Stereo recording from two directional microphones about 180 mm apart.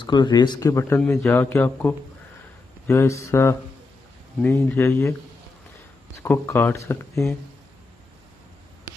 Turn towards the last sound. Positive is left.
turn(degrees=15)  # may be behind; listen again after turning